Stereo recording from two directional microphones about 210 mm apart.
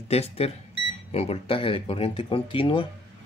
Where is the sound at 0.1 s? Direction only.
30° left (ahead or behind).